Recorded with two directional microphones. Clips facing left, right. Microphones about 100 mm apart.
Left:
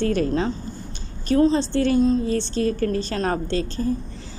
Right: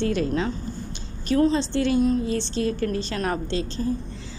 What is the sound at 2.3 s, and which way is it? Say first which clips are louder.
A woman's voice: left 3 dB; 40° left (ahead or behind).